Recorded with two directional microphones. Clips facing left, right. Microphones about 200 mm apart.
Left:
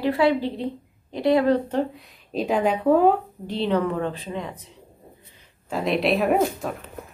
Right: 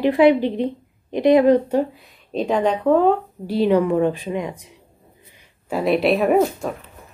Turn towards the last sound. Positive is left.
turn(degrees=0)  # may be behind; listen again after turning